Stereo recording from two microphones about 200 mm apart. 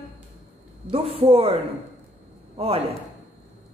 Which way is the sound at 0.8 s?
30° right (ahead or behind).